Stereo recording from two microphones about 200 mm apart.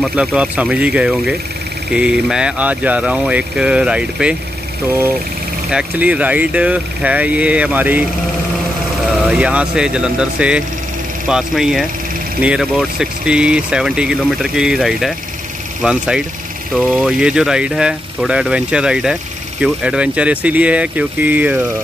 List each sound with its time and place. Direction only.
0.0 s speech: 5° right (ahead or behind)
5.7 s speech: 5° right (ahead or behind)
9.3 s speech: 5° right (ahead or behind)